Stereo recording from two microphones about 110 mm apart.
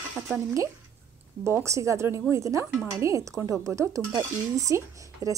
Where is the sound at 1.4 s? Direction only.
25° right (ahead or behind).